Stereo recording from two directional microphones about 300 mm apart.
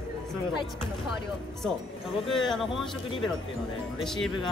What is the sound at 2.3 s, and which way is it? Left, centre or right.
Speech, centre.